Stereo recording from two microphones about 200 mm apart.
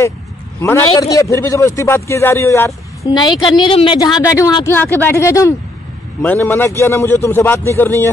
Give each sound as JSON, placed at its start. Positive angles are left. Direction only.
{"t": 0.6, "sound": "a man's voice", "side_deg": 10}